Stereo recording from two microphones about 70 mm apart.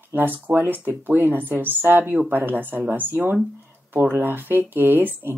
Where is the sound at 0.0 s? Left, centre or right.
Right.